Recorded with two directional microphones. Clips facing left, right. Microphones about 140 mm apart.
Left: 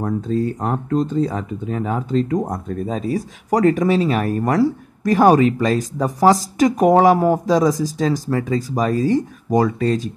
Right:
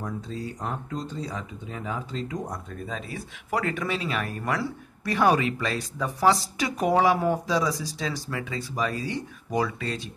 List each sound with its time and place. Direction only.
0.0 s speech: 50° left (ahead or behind)